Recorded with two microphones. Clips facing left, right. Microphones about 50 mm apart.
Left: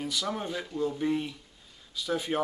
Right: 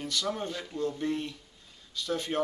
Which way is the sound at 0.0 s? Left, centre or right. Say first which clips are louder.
Even; centre.